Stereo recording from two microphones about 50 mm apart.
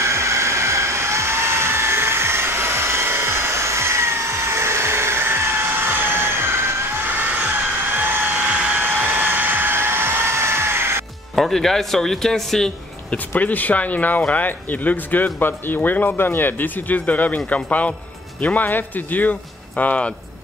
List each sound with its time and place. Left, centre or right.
0.0 s hair dryer: right
7.1 s vehicle: right
8.4 s hair dryer: right
8.8 s hair dryer: right
11.3 s speech: centre
13.3 s speech: left